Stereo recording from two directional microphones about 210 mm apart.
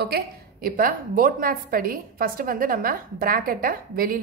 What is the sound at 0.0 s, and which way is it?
A woman's voice, 45° right (ahead or behind).